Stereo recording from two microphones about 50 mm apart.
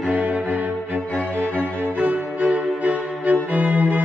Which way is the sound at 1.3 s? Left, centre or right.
Right.